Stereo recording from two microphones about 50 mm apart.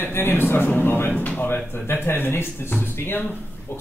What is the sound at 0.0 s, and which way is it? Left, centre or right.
Speech, left.